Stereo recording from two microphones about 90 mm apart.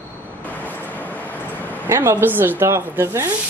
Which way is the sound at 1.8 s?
30° right (ahead or behind).